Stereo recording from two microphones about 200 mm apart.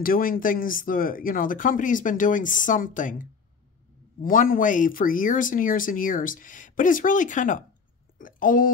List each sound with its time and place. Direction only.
0.0 s a woman's voice: 45° left (ahead or behind)